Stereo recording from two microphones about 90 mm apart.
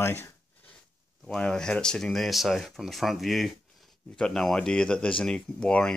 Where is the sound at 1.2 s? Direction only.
5° left (ahead or behind).